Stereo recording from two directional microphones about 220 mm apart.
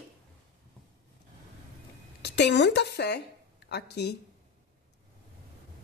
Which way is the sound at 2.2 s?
50° left (ahead or behind).